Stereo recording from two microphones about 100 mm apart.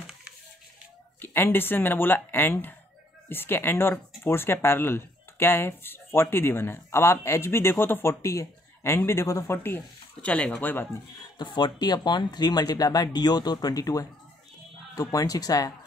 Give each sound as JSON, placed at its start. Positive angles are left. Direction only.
{"t": 1.2, "sound": "speech", "side_deg": 20}
{"t": 10.2, "sound": "speech", "side_deg": 10}
{"t": 11.1, "sound": "speech", "side_deg": 45}